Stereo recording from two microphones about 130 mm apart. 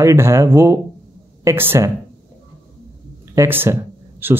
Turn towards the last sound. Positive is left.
turn(degrees=-15)  # may be behind; listen again after turning